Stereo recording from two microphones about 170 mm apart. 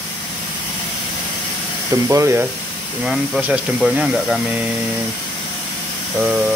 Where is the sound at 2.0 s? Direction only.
15° right (ahead or behind).